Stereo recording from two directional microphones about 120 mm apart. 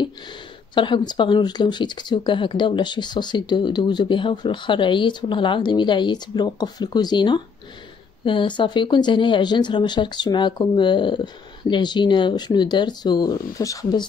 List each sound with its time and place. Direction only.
0.0 s speech: 40° left (ahead or behind)